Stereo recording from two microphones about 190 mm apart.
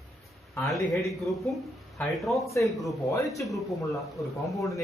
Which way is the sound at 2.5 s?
15° left (ahead or behind).